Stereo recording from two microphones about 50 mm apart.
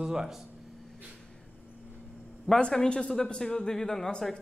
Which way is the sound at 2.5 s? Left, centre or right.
Centre.